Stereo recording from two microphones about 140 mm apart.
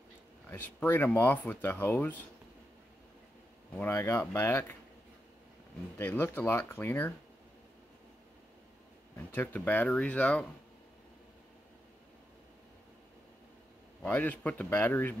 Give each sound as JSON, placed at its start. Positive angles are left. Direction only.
{"t": 0.5, "sound": "speech", "side_deg": 15}
{"t": 3.7, "sound": "speech", "side_deg": 15}
{"t": 5.9, "sound": "speech", "side_deg": 15}
{"t": 9.3, "sound": "speech", "side_deg": 10}
{"t": 14.0, "sound": "speech", "side_deg": 10}